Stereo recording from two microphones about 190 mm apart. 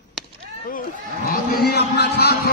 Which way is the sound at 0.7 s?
50° left (ahead or behind).